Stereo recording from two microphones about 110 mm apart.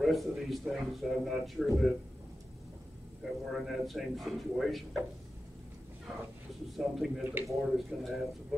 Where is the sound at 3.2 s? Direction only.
5° right (ahead or behind).